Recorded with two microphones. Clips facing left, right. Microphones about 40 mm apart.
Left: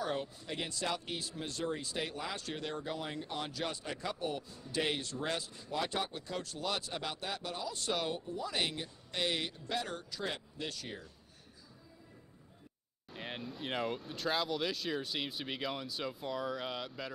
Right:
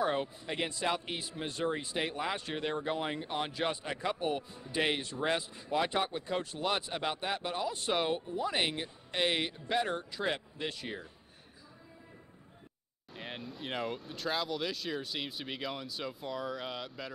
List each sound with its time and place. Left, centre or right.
0.0 s a man's voice: right
13.1 s speech: centre